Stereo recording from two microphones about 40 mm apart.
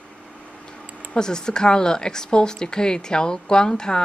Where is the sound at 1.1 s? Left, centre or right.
Centre.